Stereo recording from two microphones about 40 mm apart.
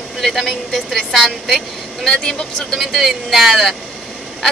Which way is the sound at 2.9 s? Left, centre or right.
Centre.